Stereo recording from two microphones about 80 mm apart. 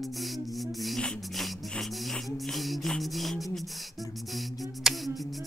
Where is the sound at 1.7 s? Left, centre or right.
Centre.